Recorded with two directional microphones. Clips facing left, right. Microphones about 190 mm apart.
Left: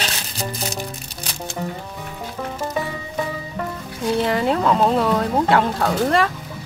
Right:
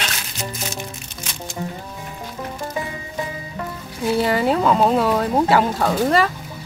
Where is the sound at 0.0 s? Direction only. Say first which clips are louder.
Left 2 dB; 35° left (ahead or behind).